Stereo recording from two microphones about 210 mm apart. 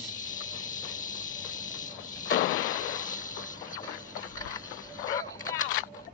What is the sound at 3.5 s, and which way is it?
Shuffle, 40° left (ahead or behind).